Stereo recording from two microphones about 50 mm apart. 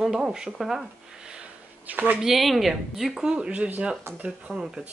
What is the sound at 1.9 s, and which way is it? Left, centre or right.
Speech, right.